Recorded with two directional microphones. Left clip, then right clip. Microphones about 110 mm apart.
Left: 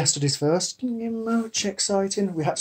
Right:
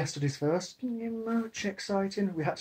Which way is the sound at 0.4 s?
20° left (ahead or behind).